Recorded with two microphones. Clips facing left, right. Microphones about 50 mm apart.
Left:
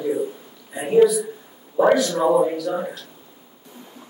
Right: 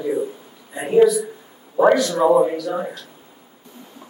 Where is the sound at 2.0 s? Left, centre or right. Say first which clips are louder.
Right 2 dB; right.